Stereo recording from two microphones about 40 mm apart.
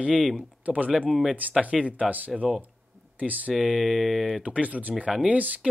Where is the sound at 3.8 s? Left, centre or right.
Centre.